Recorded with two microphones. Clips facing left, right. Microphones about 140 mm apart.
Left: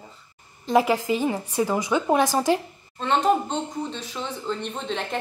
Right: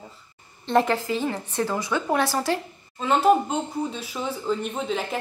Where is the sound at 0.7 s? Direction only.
10° left (ahead or behind).